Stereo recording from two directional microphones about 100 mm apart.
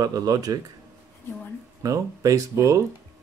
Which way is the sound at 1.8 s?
35° right (ahead or behind).